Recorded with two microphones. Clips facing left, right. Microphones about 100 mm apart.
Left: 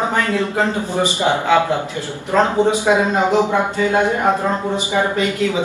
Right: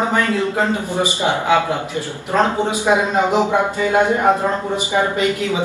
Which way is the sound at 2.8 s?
15° right (ahead or behind).